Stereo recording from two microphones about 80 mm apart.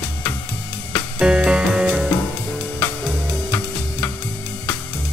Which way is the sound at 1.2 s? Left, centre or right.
Centre.